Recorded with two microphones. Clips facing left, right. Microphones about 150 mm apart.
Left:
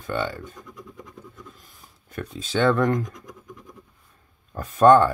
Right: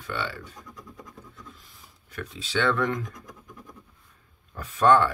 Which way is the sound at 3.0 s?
20° left (ahead or behind).